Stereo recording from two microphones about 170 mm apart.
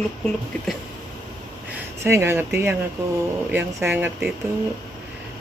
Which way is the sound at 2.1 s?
15° right (ahead or behind).